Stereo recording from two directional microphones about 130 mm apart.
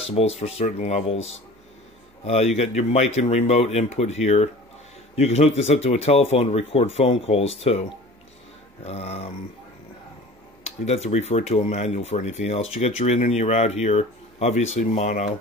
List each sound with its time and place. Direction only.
0.1 s speech: 50° left (ahead or behind)
8.8 s speech: 55° left (ahead or behind)
10.6 s speech: 55° left (ahead or behind)